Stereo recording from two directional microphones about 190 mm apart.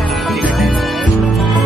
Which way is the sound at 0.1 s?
Centre (ahead or behind).